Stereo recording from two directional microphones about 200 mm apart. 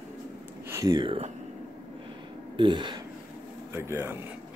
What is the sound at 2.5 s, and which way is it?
Speech, 25° right (ahead or behind).